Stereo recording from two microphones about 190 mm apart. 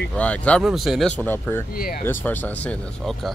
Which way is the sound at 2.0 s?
10° left (ahead or behind).